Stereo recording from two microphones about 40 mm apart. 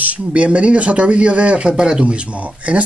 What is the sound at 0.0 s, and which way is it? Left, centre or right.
Speech, right.